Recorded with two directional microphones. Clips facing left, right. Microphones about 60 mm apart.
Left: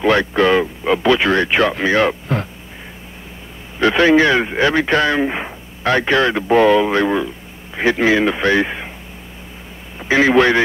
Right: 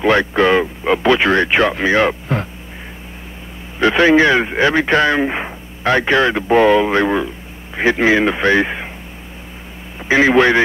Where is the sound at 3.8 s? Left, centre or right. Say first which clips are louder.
Right 1 dB; right.